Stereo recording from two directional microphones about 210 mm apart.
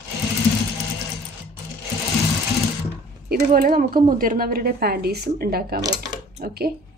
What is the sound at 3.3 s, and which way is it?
Speech, 40° right (ahead or behind).